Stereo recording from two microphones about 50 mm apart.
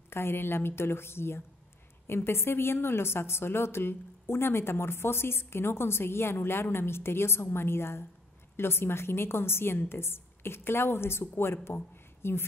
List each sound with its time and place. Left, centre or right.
0.1 s a woman's voice: left